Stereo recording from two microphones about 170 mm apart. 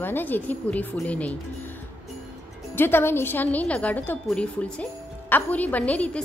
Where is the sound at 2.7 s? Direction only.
10° left (ahead or behind).